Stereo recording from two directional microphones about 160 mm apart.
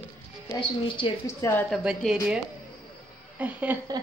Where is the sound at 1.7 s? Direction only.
5° right (ahead or behind).